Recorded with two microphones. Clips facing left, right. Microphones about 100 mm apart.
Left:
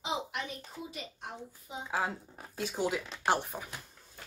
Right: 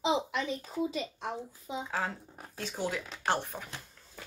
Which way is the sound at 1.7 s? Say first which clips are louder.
Right 5 dB; 90° right.